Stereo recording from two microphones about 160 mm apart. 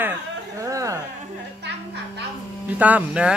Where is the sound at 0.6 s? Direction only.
20° right (ahead or behind).